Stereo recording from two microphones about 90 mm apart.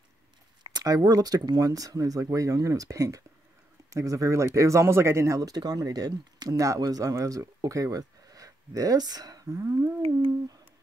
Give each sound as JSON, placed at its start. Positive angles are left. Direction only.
{"t": 0.7, "sound": "speech", "side_deg": -45}